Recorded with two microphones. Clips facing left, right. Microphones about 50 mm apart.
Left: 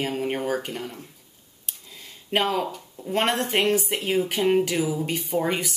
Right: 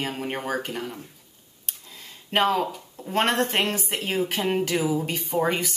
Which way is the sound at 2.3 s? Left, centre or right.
Centre.